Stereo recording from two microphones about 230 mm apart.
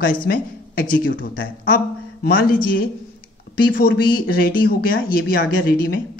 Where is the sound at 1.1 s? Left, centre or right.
Left.